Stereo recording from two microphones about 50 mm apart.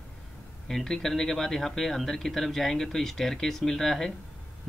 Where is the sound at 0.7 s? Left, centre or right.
Centre.